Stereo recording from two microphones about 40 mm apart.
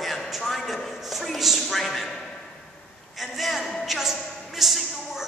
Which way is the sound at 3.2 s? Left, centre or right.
Centre.